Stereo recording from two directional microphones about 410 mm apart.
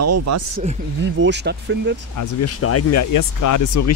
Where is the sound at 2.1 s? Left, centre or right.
Left.